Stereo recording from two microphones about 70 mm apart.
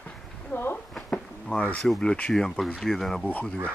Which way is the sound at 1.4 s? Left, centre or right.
Centre.